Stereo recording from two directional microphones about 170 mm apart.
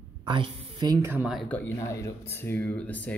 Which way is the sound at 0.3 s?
35° right (ahead or behind).